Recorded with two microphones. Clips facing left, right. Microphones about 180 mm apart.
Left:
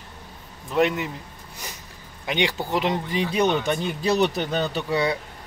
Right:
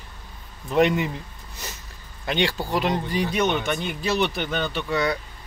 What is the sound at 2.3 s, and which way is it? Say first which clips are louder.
Speech: even; 15° left (ahead or behind).